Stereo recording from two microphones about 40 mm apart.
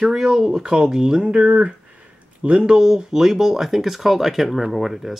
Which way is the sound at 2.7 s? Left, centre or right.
Centre.